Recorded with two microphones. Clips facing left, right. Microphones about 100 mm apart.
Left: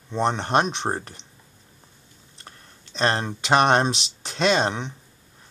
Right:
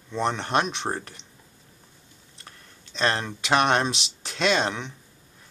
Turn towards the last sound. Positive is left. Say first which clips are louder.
# left 3 dB
turn(degrees=30)  # may be behind; listen again after turning